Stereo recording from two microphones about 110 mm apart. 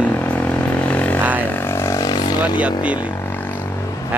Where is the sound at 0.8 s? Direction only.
15° left (ahead or behind).